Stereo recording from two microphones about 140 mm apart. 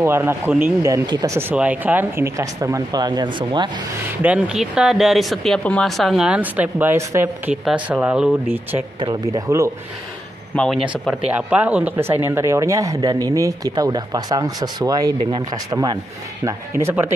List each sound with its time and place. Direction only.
0.0 s speech: 15° right (ahead or behind)
0.8 s speech: 30° right (ahead or behind)
1.3 s speech: 15° right (ahead or behind); by 3.7 s 35° right (ahead or behind)
4.2 s speech: 10° right (ahead or behind)
7.6 s speech: 10° right (ahead or behind)
9.0 s speech: 30° right (ahead or behind)
10.5 s speech: 5° left (ahead or behind)
10.8 s speech: 5° right (ahead or behind)